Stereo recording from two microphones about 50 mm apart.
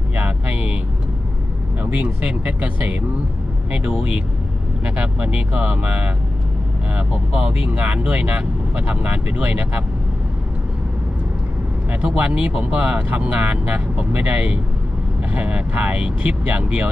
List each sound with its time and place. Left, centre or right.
0.1 s vehicle: right
1.8 s speech: right
3.7 s speech: centre
12.3 s speech: right